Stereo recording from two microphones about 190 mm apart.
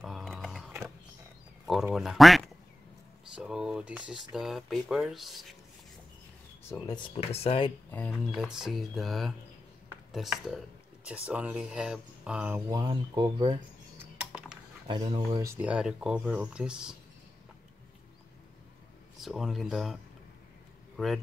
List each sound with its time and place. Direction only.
0.0 s a sound: centre (ahead or behind)
1.7 s speech: centre (ahead or behind)
7.2 s speech: 30° left (ahead or behind)
7.9 s speech: 5° left (ahead or behind)
12.7 s speech: 25° right (ahead or behind)
13.9 s typing: 5° right (ahead or behind)
14.9 s speech: 25° right (ahead or behind)
15.3 s speech: 15° right (ahead or behind)
19.2 s a man's voice: centre (ahead or behind)